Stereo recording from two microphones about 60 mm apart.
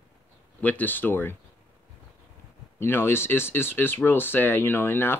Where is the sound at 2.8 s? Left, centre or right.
Left.